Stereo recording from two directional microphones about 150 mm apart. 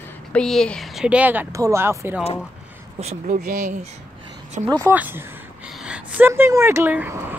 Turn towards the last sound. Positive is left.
turn(degrees=-15)  # may be behind; listen again after turning